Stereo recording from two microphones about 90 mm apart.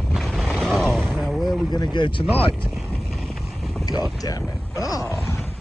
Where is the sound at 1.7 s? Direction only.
55° left (ahead or behind).